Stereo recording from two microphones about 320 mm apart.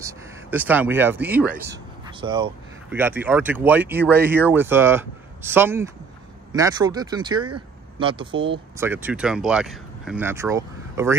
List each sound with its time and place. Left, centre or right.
0.0 s speech: centre